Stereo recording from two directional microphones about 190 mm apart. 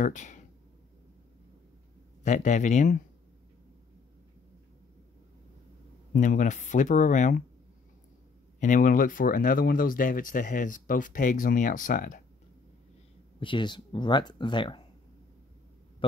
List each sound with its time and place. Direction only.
0.0 s speech: 40° left (ahead or behind)
2.2 s speech: 40° left (ahead or behind)
6.1 s speech: 40° left (ahead or behind)
8.5 s speech: 40° left (ahead or behind)
13.4 s speech: 25° left (ahead or behind)
16.0 s speech: 25° left (ahead or behind)